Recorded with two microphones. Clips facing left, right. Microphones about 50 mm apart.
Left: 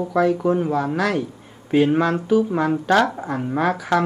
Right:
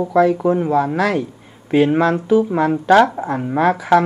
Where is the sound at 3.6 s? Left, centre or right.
Right.